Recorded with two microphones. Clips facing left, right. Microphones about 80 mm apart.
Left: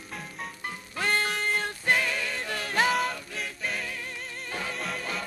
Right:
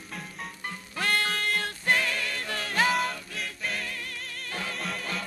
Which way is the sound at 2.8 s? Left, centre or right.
Centre.